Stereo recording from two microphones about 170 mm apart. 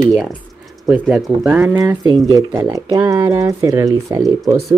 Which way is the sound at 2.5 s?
20° right (ahead or behind).